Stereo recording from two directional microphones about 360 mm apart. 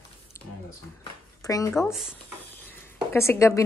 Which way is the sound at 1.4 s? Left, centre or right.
Centre.